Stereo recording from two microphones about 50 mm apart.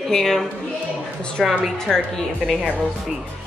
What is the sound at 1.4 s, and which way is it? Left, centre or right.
Speech, centre.